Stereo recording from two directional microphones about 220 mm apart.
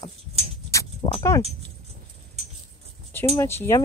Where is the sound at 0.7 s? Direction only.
15° left (ahead or behind).